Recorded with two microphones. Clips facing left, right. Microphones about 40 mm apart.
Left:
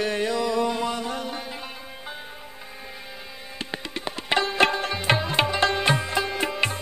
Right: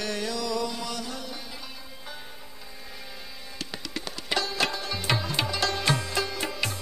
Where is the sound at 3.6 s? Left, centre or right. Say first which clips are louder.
Left 4 dB; left.